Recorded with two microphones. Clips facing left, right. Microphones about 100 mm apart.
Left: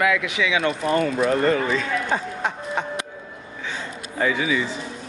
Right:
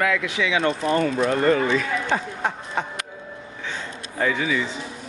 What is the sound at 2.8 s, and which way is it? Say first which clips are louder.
Music: right 1 dB; 20° left (ahead or behind).